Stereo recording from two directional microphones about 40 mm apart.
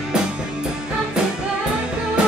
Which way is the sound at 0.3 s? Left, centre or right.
Right.